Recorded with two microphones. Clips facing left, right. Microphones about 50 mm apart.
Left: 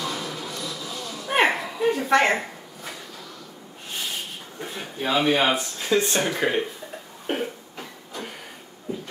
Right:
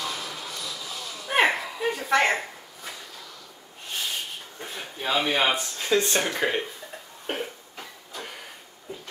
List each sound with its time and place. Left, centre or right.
0.0 s a sound: centre
4.6 s speech: centre
7.2 s cough: centre